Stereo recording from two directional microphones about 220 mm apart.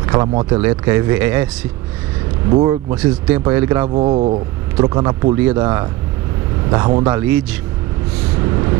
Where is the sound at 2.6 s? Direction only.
20° right (ahead or behind).